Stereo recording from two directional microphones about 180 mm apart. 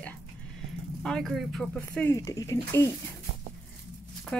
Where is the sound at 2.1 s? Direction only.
20° left (ahead or behind).